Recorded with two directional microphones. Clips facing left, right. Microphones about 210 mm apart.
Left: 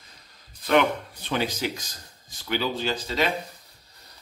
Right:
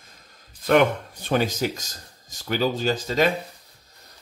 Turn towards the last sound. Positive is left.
turn(degrees=-45)  # may be behind; listen again after turning